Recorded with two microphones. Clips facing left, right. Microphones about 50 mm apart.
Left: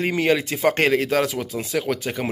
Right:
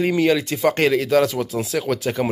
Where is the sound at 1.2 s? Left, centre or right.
Centre.